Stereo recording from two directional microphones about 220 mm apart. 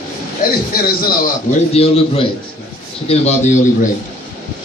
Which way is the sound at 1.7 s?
25° left (ahead or behind).